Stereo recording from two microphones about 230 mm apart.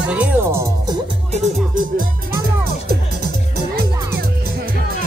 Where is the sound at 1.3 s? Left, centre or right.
Right.